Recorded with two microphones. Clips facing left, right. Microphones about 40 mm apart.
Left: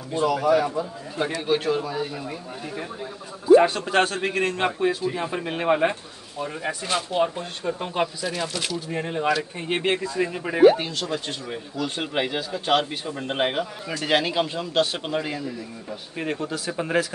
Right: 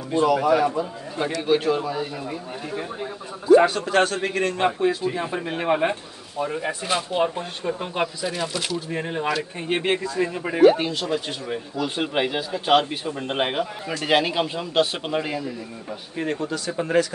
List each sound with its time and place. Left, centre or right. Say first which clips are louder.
0.2 s speech: right 2 dB; centre
1.4 s speech: right 3 dB; centre
10.9 s speech: right 3 dB; centre
16.2 s speech: right 2 dB; centre